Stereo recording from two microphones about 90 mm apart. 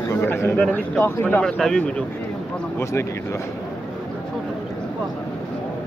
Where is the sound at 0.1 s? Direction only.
25° left (ahead or behind).